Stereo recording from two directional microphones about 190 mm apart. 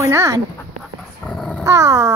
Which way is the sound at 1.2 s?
5° left (ahead or behind).